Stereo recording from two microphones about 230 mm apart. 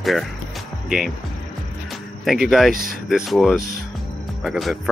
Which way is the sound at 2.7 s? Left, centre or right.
Right.